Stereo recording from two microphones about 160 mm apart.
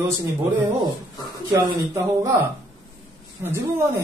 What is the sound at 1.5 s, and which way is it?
Speech, 20° right (ahead or behind).